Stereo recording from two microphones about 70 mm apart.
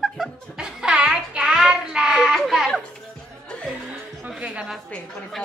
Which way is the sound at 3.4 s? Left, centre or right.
Centre.